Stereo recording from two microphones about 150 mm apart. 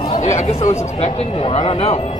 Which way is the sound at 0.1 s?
50° left (ahead or behind).